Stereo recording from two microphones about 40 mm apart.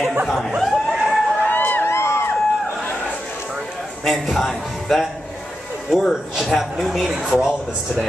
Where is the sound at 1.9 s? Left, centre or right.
Left.